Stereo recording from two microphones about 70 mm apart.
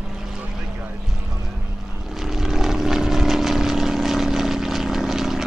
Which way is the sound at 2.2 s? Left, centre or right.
Centre.